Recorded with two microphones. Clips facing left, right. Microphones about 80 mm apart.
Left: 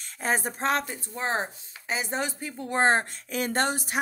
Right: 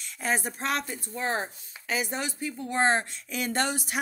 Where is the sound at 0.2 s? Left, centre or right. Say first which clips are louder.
Left 2 dB; left.